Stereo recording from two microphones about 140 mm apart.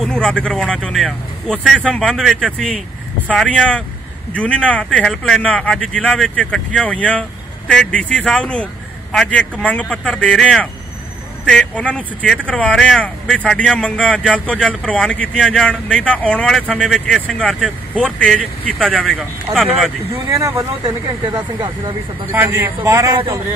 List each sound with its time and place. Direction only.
0.0 s speech: 5° left (ahead or behind)
20.2 s speech: 25° right (ahead or behind)
22.3 s speech: 15° right (ahead or behind)